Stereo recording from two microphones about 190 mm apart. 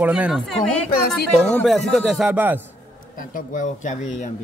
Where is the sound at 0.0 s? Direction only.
5° right (ahead or behind).